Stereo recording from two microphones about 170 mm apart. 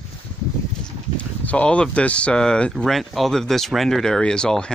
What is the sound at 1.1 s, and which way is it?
Speech, 10° left (ahead or behind).